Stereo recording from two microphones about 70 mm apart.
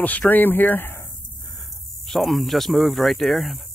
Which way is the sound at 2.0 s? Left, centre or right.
Centre.